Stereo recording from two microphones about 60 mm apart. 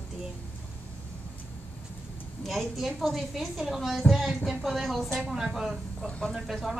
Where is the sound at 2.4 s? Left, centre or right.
Centre.